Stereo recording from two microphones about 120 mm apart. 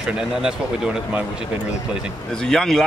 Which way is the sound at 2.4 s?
5° left (ahead or behind).